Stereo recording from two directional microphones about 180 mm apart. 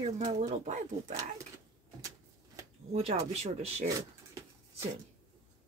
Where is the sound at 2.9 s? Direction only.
40° right (ahead or behind).